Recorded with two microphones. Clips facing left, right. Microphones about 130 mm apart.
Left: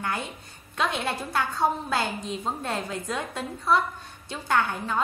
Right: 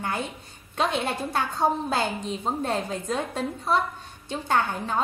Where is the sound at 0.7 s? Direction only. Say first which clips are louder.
Right 2 dB; 25° right (ahead or behind).